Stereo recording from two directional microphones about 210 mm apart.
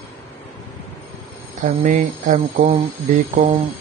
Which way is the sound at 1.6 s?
35° right (ahead or behind).